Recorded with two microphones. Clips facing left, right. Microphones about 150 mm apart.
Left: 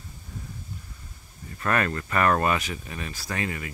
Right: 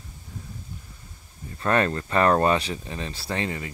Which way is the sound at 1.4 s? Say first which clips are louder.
Right 3 dB; 25° right (ahead or behind).